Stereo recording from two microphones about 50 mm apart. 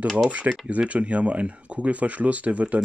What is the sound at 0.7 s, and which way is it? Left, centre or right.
Speech, right.